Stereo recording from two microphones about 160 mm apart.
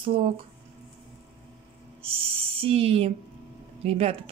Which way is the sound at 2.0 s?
35° right (ahead or behind).